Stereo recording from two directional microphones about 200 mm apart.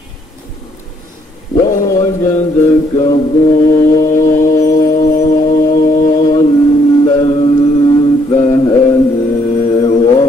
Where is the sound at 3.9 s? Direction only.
40° left (ahead or behind).